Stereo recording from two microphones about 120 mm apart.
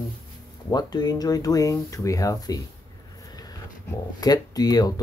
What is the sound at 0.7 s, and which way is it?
Speech, 35° left (ahead or behind).